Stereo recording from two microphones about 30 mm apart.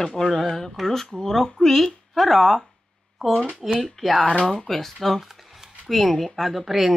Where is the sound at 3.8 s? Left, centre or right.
Centre.